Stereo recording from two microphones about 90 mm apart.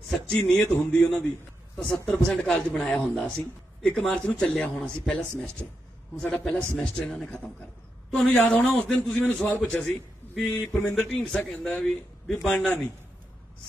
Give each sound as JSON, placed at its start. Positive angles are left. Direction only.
{"t": 0.1, "sound": "a man's voice", "side_deg": 10}
{"t": 10.7, "sound": "speech", "side_deg": 20}
{"t": 11.0, "sound": "a man's voice", "side_deg": 10}